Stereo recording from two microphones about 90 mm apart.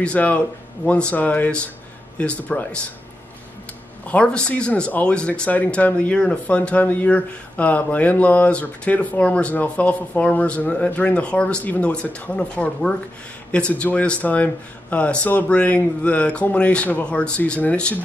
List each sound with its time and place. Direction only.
0.0 s speech: 15° left (ahead or behind)
4.0 s speech: 15° left (ahead or behind)